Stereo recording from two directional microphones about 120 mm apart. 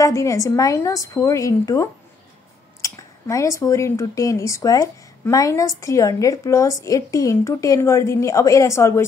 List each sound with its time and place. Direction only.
0.0 s speech: 25° left (ahead or behind)